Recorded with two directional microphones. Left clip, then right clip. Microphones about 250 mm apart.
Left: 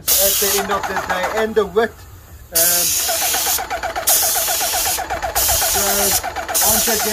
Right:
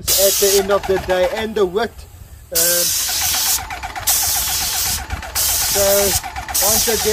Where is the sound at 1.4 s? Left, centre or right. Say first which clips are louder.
Left 2 dB; right.